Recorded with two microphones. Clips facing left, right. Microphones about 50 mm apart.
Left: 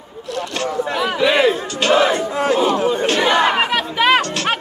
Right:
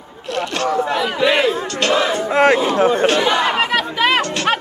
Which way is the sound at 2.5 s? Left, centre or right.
Right.